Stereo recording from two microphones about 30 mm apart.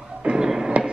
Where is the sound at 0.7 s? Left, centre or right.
Right.